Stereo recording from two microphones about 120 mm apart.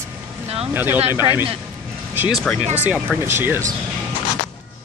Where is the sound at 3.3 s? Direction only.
20° right (ahead or behind).